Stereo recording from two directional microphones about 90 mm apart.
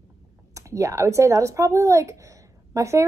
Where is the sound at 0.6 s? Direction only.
35° right (ahead or behind).